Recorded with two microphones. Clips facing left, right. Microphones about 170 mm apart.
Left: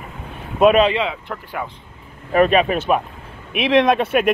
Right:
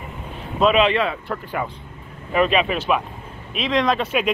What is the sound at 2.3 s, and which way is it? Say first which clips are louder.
Speech: left 4 dB; 45° left (ahead or behind).